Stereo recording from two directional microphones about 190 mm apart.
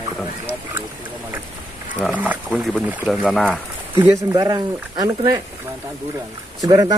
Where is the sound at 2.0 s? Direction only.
5° right (ahead or behind).